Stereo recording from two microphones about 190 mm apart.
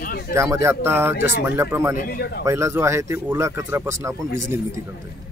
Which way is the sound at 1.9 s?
55° left (ahead or behind).